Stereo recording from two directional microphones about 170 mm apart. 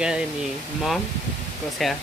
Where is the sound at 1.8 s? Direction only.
Centre (ahead or behind).